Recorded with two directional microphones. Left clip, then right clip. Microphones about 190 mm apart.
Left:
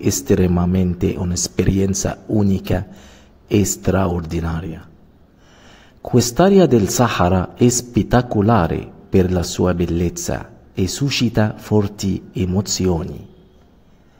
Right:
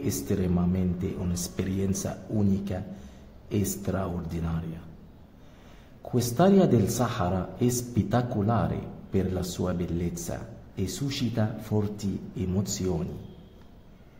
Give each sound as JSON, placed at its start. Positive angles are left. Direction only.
{"t": 0.0, "sound": "a man's voice", "side_deg": 35}
{"t": 6.0, "sound": "a man's voice", "side_deg": 35}